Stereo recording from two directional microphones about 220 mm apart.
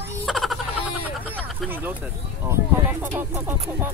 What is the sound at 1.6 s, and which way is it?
A child's voice, 10° right (ahead or behind).